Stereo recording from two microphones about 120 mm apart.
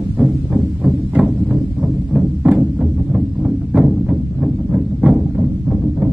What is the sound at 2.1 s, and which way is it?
Music, 10° right (ahead or behind).